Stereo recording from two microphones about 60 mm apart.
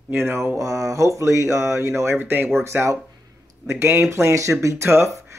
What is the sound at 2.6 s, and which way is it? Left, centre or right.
Speech, right.